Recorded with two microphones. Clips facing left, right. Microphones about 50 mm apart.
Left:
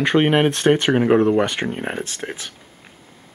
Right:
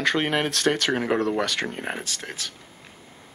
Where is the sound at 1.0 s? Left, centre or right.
Centre.